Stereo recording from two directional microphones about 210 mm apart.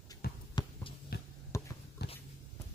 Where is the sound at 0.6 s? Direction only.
20° left (ahead or behind).